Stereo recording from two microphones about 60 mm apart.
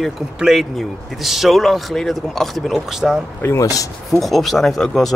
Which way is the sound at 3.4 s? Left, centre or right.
Left.